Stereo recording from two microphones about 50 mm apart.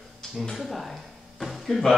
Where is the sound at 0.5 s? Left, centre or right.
Centre.